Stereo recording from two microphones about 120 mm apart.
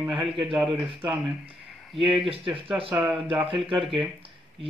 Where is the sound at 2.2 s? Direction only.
45° right (ahead or behind).